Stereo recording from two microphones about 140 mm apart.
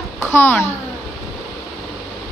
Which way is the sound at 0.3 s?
15° left (ahead or behind).